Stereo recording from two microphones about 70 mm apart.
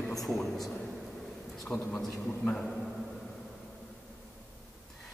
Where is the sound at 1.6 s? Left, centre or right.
Centre.